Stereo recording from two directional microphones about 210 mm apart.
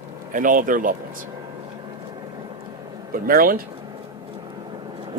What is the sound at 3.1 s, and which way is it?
Speech, 45° right (ahead or behind).